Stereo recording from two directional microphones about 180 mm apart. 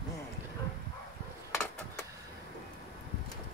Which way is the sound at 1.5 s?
15° left (ahead or behind).